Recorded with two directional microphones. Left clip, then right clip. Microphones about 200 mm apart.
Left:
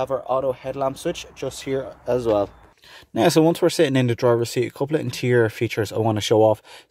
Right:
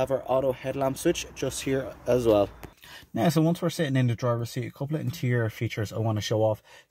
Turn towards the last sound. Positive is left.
turn(degrees=20)  # may be behind; listen again after turning